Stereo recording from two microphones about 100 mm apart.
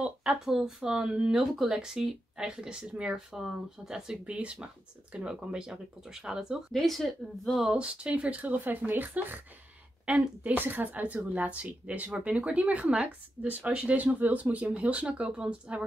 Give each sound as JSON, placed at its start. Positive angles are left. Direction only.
{"t": 0.0, "sound": "speech", "side_deg": -10}
{"t": 7.6, "sound": "speech", "side_deg": -10}